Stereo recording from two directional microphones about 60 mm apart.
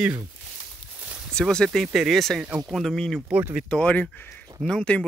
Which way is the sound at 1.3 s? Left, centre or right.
Centre.